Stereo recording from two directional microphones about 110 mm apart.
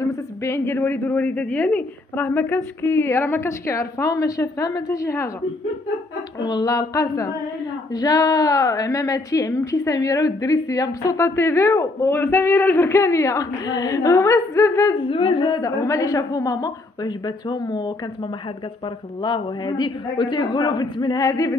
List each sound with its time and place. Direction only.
0.0 s a woman's voice: 25° left (ahead or behind)
6.4 s a woman's voice: 35° left (ahead or behind)
15.0 s humming: 50° left (ahead or behind)
15.6 s a woman's voice: 30° left (ahead or behind)
19.2 s a woman's voice: 40° left (ahead or behind)